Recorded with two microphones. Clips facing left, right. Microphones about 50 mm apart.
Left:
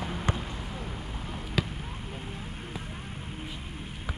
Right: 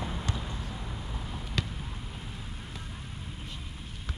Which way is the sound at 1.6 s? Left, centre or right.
Centre.